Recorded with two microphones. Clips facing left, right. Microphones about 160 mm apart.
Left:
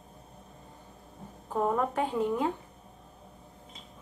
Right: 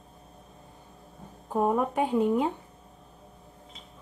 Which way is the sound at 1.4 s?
15° right (ahead or behind).